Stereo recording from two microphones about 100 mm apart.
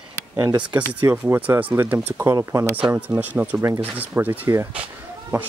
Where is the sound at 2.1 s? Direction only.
30° right (ahead or behind).